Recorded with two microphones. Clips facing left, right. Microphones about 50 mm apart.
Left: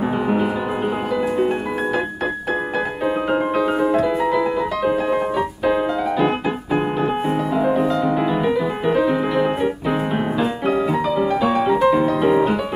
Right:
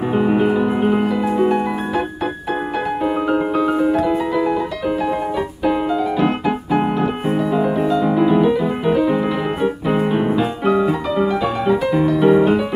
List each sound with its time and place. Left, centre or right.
0.2 s music: centre
3.1 s music: centre
6.2 s keyboard: centre
7.2 s music: centre
11.4 s music: centre
12.3 s music: centre